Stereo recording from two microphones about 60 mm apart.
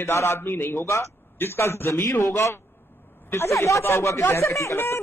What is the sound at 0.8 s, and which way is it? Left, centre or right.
Speech, left.